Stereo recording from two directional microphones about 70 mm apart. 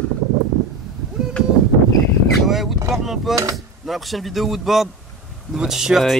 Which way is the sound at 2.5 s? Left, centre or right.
Centre.